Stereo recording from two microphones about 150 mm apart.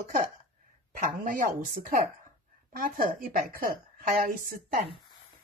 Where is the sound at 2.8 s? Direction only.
75° right (ahead or behind).